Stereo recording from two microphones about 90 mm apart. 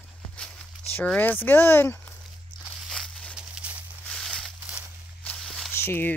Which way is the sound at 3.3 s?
15° right (ahead or behind).